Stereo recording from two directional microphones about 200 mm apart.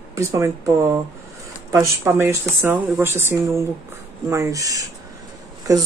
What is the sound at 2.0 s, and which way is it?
Speech, 10° right (ahead or behind).